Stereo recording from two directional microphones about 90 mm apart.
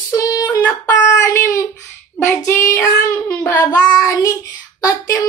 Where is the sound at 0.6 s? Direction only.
20° left (ahead or behind); by 1.7 s 35° left (ahead or behind).